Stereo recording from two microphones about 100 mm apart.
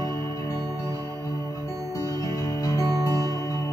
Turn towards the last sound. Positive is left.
turn(degrees=-35)  # may be behind; listen again after turning